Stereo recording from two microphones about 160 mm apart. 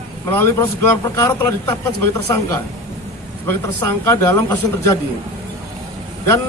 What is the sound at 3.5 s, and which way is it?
Speech, 15° left (ahead or behind).